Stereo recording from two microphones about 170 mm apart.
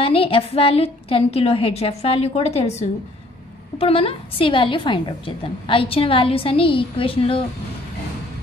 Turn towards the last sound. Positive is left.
turn(degrees=30)  # may be behind; listen again after turning